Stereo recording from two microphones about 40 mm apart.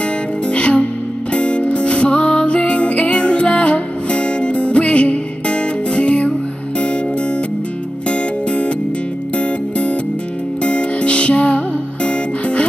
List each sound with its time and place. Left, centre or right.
0.5 s music: left
8.1 s music: left